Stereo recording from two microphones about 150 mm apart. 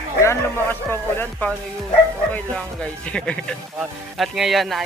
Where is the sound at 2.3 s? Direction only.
5° left (ahead or behind).